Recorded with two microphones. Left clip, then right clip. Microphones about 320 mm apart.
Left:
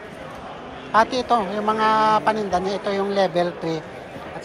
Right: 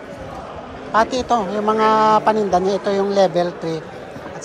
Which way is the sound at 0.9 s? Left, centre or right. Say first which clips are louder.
Right 1 dB; centre.